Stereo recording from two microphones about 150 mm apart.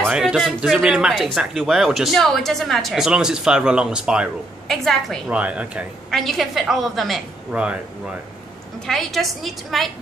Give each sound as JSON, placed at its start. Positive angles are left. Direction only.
{"t": 0.1, "sound": "speech", "side_deg": -5}
{"t": 8.8, "sound": "speech", "side_deg": 0}